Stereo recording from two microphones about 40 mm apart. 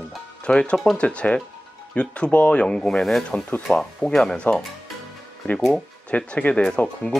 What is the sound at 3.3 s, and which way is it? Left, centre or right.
Speech, left.